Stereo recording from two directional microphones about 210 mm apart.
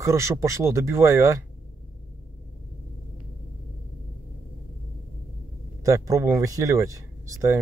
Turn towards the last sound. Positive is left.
turn(degrees=-15)  # may be behind; listen again after turning